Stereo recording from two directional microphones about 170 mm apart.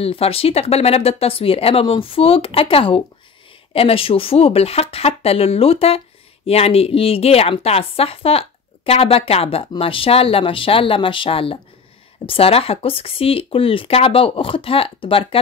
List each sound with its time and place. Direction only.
0.0 s speech: 35° left (ahead or behind)